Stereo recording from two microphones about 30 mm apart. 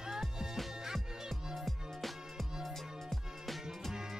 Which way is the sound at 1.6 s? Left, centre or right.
Centre.